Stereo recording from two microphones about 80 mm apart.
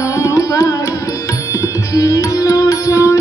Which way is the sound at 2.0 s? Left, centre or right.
Left.